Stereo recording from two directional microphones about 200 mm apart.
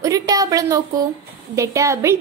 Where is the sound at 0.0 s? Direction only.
15° right (ahead or behind).